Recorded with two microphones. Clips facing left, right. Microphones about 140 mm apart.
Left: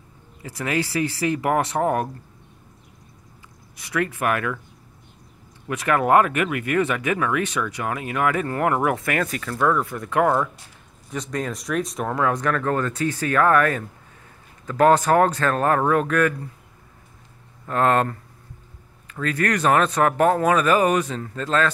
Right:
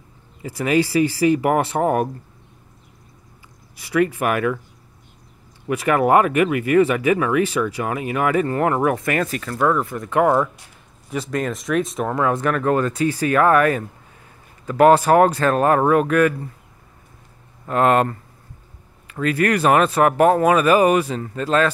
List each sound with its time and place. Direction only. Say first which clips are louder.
1.4 s speech: right 3 dB; 10° right (ahead or behind)
3.8 s speech: right 5 dB; 10° right (ahead or behind)
5.7 s speech: right 2 dB; 10° right (ahead or behind)
9.6 s speech: right 2 dB; 15° right (ahead or behind)
9.8 s speech: right 3 dB; centre (ahead or behind)
17.6 s speech: right 3 dB; 15° right (ahead or behind)
19.1 s speech: right 4 dB; 10° right (ahead or behind)